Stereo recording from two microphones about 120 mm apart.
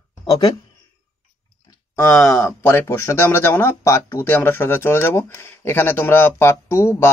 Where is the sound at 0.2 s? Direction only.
35° left (ahead or behind).